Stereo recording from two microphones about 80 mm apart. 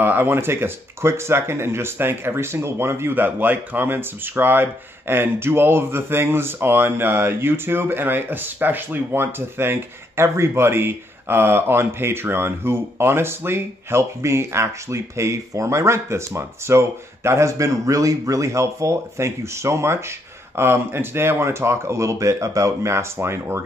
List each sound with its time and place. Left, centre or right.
0.0 s speech: right